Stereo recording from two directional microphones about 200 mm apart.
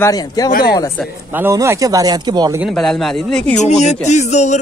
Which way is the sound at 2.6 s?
Centre (ahead or behind).